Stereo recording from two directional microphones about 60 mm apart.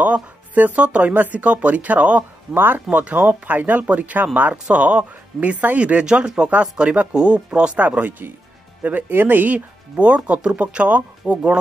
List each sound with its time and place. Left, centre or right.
0.0 s speech: right
7.8 s speech: right